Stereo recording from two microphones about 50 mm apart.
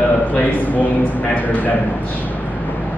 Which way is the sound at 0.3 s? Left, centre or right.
Left.